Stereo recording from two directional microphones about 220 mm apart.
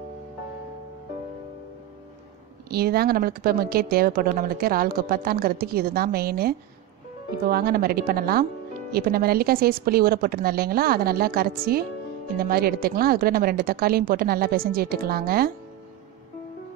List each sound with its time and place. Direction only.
2.7 s a woman's voice: 45° right (ahead or behind)